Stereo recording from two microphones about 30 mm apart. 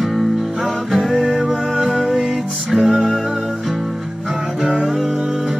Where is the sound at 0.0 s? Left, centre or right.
Centre.